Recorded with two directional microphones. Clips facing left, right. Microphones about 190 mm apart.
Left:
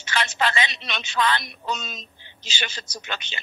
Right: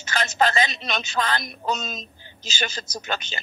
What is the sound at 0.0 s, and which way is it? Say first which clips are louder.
A woman's voice: right 3 dB; 40° right (ahead or behind).